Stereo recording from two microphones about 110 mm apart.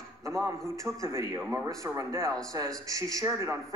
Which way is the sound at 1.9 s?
30° right (ahead or behind).